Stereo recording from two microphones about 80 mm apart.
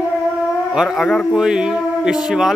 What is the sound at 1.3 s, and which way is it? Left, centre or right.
Speech, centre.